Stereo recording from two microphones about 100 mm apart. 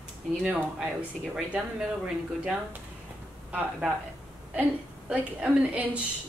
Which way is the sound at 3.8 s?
5° right (ahead or behind).